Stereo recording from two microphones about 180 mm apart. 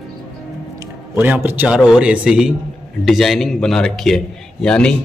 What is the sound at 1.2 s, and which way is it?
A man's voice, 10° right (ahead or behind).